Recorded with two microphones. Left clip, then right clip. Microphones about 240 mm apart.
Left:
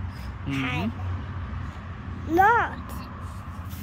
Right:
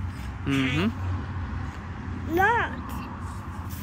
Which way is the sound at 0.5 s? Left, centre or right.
Centre.